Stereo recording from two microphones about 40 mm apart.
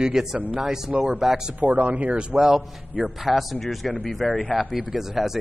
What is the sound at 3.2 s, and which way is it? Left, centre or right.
Speech, centre.